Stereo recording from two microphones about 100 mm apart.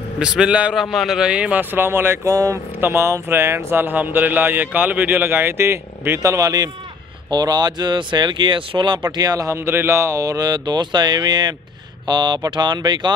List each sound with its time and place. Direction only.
0.2 s a man's voice: 10° right (ahead or behind)
2.3 s speech: 35° right (ahead or behind)